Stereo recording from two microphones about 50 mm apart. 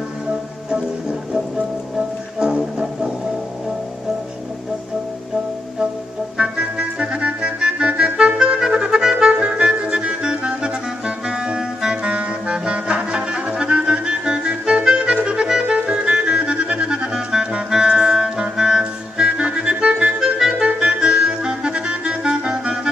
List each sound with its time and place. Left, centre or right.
2.0 s music: centre
6.3 s music: centre
15.7 s clarinet: centre
20.2 s clarinet: centre
20.6 s clarinet: right